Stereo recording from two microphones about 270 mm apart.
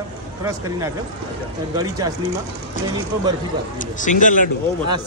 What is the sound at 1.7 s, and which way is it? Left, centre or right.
Speech, centre.